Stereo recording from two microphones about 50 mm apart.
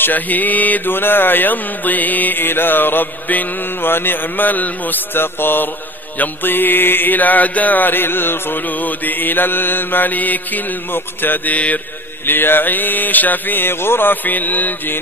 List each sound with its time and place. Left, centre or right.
0.0 s speech: left
3.9 s mantra: left
6.1 s speech: left
8.6 s speech: left
12.3 s speech: left